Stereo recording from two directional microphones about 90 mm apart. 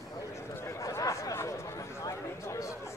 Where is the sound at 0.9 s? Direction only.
35° left (ahead or behind).